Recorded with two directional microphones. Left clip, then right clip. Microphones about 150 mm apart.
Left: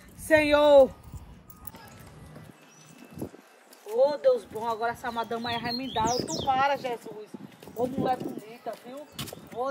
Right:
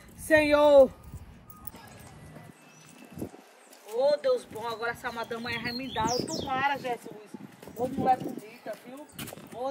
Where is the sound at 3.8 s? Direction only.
70° left (ahead or behind).